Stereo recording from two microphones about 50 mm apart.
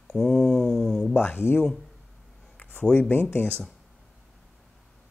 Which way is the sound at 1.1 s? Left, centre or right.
Left.